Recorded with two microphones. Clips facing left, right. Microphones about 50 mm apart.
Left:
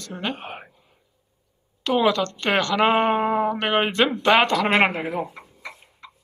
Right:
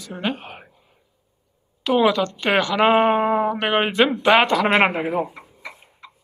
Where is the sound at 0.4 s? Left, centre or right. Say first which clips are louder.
Left 3 dB; left.